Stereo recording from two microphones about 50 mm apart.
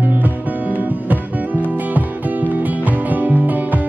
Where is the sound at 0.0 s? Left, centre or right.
Right.